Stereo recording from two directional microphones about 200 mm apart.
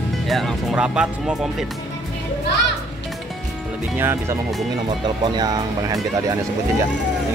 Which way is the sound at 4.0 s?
10° right (ahead or behind).